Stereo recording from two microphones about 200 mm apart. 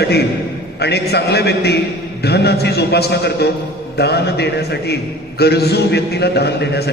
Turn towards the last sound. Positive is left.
turn(degrees=55)  # may be behind; listen again after turning